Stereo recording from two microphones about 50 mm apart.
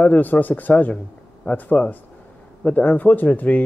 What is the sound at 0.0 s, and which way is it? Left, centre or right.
Speech, left.